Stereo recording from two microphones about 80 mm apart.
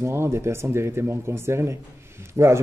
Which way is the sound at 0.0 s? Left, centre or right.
Right.